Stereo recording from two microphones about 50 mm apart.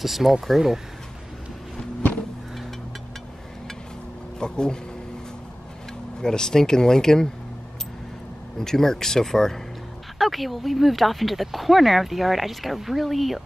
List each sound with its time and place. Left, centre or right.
0.0 s speech: centre
4.4 s a sound: centre
6.2 s speech: centre
8.5 s speech: centre